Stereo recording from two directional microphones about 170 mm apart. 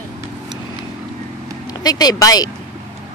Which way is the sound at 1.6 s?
20° left (ahead or behind).